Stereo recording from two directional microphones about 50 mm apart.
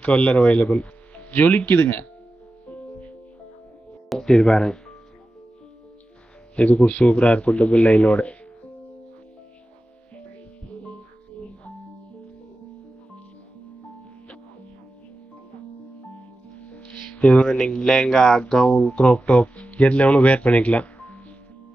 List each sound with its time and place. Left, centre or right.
0.0 s speech: left
0.7 s music: left
1.6 s speech: left
2.6 s music: left
4.1 s music: centre
4.5 s speech: centre
6.5 s speech: left
10.7 s music: left
16.5 s speech: left